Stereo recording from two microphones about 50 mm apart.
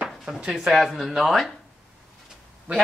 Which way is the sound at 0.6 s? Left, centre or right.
Centre.